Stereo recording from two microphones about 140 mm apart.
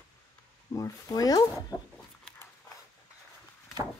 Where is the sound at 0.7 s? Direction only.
25° left (ahead or behind).